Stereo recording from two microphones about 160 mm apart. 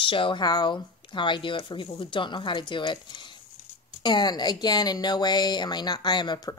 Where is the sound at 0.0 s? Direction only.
30° left (ahead or behind).